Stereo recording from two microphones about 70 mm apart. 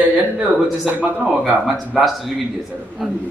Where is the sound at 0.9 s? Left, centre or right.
Centre.